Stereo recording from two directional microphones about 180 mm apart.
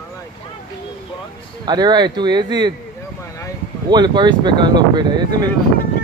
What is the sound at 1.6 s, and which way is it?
Speech, 25° right (ahead or behind).